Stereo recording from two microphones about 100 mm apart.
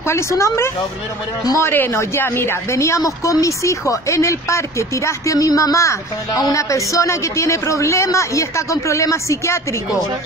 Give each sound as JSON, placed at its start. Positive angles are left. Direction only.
{"t": 0.0, "sound": "a woman's voice", "side_deg": 30}